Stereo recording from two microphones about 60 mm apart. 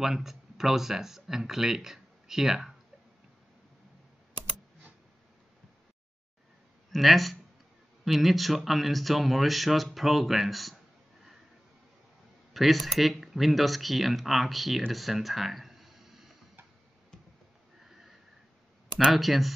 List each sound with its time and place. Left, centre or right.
0.0 s speech: centre
6.9 s speech: centre
12.5 s speech: centre
14.9 s a sound: centre
18.9 s speech: centre